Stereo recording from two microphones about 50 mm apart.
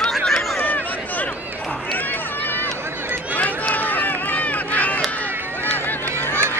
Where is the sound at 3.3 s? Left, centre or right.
Left.